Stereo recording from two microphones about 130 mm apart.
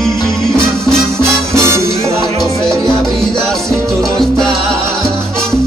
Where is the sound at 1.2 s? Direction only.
20° right (ahead or behind).